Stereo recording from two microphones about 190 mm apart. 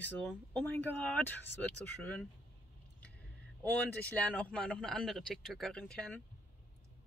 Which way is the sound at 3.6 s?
10° left (ahead or behind).